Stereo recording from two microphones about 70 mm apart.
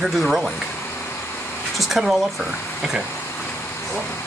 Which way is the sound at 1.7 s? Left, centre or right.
Centre.